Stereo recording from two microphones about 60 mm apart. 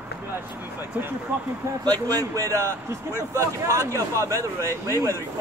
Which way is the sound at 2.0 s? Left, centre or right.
Right.